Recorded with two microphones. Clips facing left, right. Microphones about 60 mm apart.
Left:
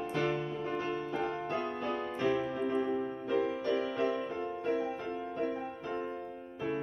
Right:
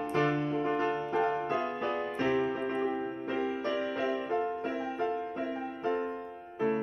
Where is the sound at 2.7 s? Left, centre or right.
Right.